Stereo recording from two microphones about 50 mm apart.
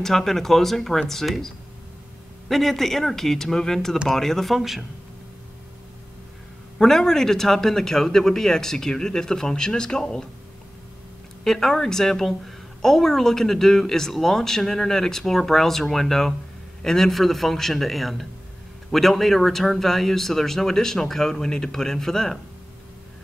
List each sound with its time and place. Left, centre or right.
0.0 s a woman's voice: centre
4.6 s speech: centre
6.8 s a woman's voice: centre
11.4 s a woman's voice: centre